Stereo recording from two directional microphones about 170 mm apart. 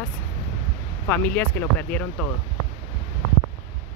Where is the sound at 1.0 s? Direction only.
10° left (ahead or behind).